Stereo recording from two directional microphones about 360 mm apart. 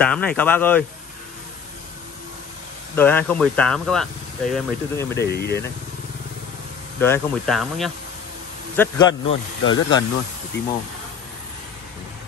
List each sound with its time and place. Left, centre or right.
0.0 s speech: centre
3.0 s speech: centre
5.1 s speech: left
7.0 s speech: centre
8.7 s speech: centre